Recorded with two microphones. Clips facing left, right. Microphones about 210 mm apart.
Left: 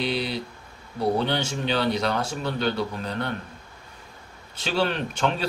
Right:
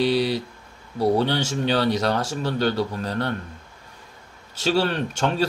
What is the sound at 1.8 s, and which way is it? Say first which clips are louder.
Speech: right 1 dB; 40° right (ahead or behind).